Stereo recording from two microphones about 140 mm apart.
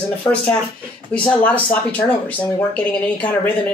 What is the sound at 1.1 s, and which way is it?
Speech, 10° left (ahead or behind).